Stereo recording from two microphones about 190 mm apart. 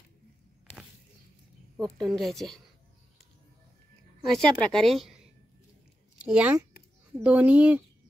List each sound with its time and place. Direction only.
1.8 s a woman's voice: centre (ahead or behind)
4.2 s a woman's voice: centre (ahead or behind)